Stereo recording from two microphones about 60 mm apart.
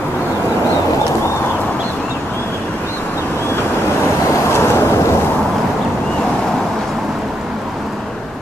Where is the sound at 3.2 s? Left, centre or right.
Left.